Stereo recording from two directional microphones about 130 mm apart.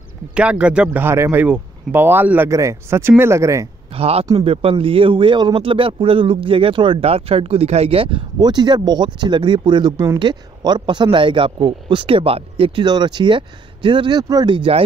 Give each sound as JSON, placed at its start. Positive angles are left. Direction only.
{"t": 0.3, "sound": "speech", "side_deg": -10}
{"t": 3.9, "sound": "speech", "side_deg": -50}